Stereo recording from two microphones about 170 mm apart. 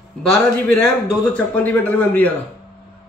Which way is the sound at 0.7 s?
5° left (ahead or behind).